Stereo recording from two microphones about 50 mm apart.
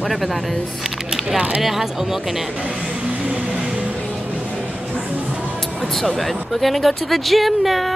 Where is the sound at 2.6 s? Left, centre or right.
Right.